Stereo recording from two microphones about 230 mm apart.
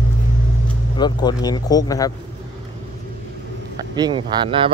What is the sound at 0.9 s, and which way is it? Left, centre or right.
Speech, centre.